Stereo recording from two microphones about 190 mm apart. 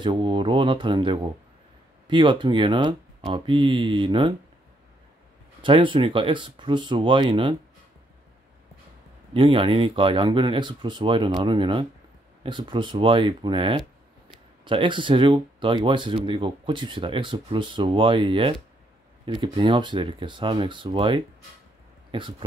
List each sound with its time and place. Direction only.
0.0 s speech: 25° right (ahead or behind)
5.6 s speech: 25° right (ahead or behind)
9.3 s speech: 30° right (ahead or behind)